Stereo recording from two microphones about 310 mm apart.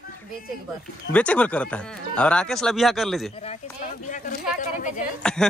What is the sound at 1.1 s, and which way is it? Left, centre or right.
A man's voice, centre.